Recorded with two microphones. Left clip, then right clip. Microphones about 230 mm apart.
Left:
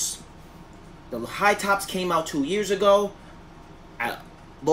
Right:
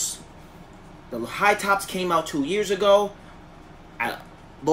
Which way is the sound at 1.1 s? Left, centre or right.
Centre.